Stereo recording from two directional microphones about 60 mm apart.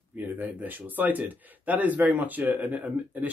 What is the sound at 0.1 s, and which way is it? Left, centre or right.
Speech, right.